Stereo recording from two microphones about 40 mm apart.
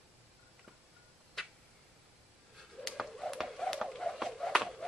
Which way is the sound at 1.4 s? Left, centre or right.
Centre.